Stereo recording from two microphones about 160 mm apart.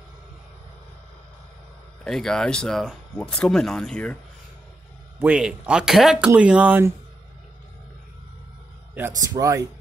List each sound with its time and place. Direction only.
2.0 s speech: 5° left (ahead or behind)
5.2 s speech: 5° right (ahead or behind)
8.9 s speech: 20° right (ahead or behind)